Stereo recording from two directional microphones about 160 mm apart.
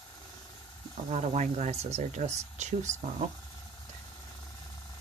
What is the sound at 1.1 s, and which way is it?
Speech, 45° right (ahead or behind).